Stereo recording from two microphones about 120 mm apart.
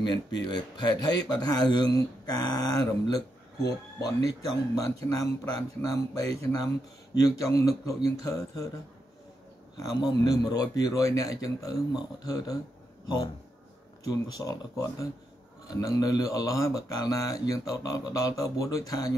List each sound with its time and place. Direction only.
0.0 s speech: 35° left (ahead or behind)
4.7 s speech: 30° left (ahead or behind)
9.8 s speech: 30° left (ahead or behind)